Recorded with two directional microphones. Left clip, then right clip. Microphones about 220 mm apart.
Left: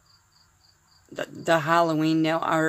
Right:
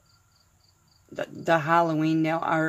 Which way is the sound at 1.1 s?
5° left (ahead or behind).